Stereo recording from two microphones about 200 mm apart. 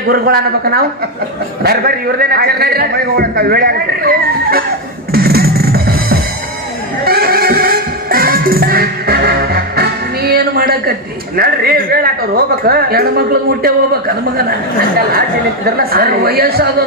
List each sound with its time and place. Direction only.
0.1 s a man's voice: 50° right (ahead or behind)
5.1 s music: 50° right (ahead or behind)
12.6 s a man's voice: 50° right (ahead or behind)
15.8 s a man's voice: 50° right (ahead or behind)